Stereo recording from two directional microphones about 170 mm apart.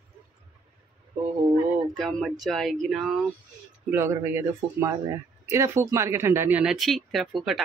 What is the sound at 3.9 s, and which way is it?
Speech, 15° right (ahead or behind).